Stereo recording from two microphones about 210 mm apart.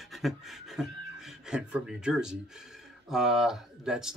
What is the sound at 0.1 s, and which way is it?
Beatboxing, centre (ahead or behind).